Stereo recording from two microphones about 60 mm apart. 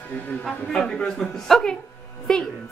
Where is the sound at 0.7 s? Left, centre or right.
Centre.